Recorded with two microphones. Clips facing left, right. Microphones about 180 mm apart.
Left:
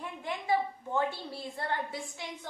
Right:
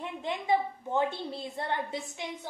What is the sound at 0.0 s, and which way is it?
A woman's voice, 20° right (ahead or behind).